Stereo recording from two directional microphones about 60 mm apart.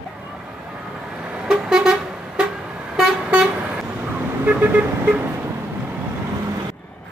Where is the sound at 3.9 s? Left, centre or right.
Right.